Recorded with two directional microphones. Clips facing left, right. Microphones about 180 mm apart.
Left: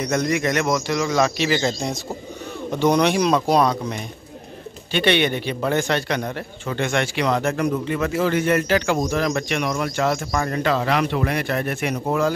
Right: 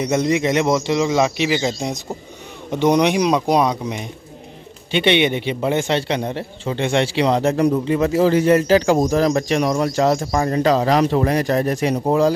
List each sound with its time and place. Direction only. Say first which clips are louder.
0.0 s a man's voice: right 3 dB; 25° right (ahead or behind)